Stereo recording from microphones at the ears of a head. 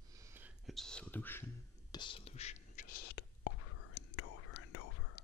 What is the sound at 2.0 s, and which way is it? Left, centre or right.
Whispering, left.